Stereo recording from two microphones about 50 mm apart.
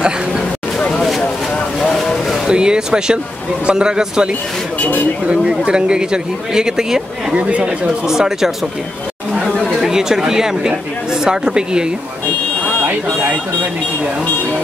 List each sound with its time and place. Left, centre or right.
0.7 s a sound: left
1.8 s vehicle: centre
2.4 s speech: centre
7.3 s speech: right
8.1 s speech: centre
9.8 s speech: centre